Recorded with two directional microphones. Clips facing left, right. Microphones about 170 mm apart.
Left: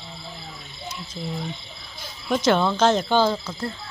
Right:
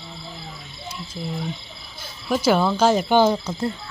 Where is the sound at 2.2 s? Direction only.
5° right (ahead or behind).